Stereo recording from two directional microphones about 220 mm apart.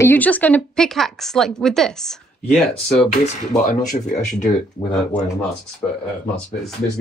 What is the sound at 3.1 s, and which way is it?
Speech, 30° left (ahead or behind).